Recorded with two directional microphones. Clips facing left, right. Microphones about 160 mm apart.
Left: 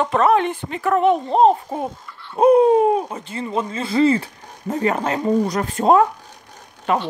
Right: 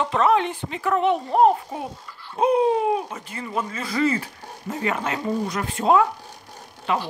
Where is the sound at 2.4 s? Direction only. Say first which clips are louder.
Left 7 dB; 45° left (ahead or behind).